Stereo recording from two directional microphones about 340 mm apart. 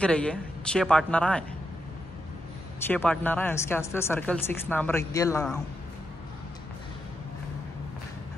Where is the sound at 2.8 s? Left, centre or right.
Centre.